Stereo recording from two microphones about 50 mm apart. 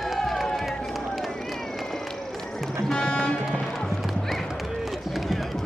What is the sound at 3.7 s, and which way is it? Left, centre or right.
Clip-clop, centre.